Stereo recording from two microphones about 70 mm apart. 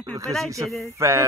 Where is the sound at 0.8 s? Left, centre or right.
Right.